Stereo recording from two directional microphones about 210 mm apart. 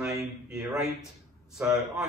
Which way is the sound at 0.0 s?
5° right (ahead or behind).